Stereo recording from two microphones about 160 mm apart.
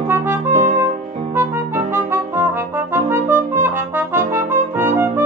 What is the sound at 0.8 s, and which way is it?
Music, 15° right (ahead or behind).